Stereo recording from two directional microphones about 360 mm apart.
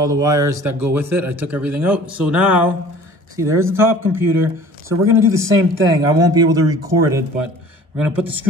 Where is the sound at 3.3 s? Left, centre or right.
Centre.